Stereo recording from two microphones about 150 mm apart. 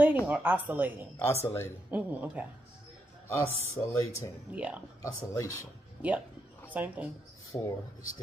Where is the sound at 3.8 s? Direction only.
20° left (ahead or behind).